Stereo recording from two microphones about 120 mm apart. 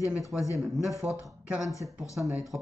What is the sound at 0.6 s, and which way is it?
Speech, centre (ahead or behind).